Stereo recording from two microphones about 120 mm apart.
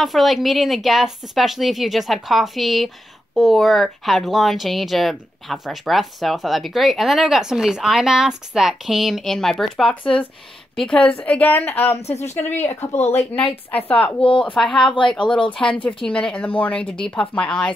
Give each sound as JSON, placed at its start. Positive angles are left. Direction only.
{"t": 0.0, "sound": "speech", "side_deg": 0}
{"t": 12.0, "sound": "speech", "side_deg": 65}
{"t": 12.4, "sound": "speech", "side_deg": 15}
{"t": 12.8, "sound": "speech", "side_deg": 65}
{"t": 13.7, "sound": "speech", "side_deg": 10}